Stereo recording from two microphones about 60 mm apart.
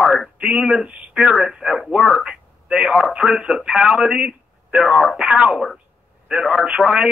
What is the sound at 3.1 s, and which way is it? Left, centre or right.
Speech, centre.